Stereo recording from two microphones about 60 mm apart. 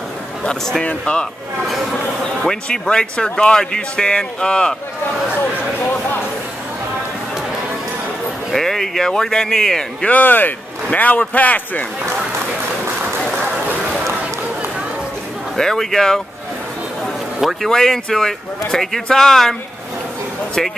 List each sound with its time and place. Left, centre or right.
0.5 s speech: centre
1.7 s speech: centre
2.4 s speech: centre
5.8 s a sound: left
8.5 s speech: centre
10.0 s speech: left
15.5 s speech: centre
17.4 s a man's voice: centre
17.6 s speech: centre